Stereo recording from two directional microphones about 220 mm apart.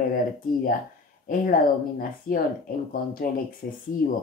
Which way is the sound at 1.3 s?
40° left (ahead or behind).